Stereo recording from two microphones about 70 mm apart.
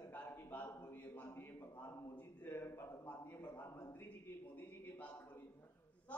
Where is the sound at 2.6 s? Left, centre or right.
Left.